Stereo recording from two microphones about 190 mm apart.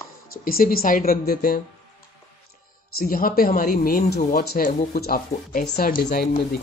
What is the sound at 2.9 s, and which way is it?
Speech, 50° left (ahead or behind).